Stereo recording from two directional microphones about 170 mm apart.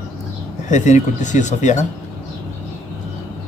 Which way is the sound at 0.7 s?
45° left (ahead or behind).